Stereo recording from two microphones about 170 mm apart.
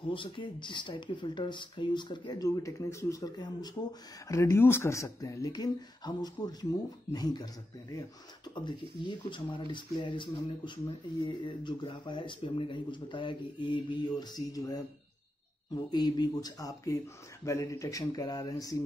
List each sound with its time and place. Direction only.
0.1 s speech: 30° left (ahead or behind)
8.5 s speech: 25° left (ahead or behind)